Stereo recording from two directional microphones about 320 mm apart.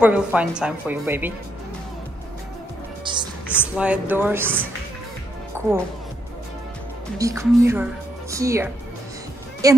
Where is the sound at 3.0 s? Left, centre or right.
Centre.